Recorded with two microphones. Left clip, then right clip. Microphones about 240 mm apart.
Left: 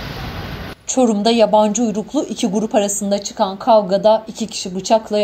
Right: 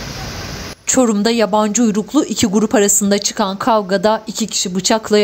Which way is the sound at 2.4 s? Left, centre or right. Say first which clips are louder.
Left 1 dB; right.